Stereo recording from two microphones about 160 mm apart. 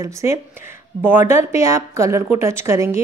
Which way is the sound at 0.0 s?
20° right (ahead or behind).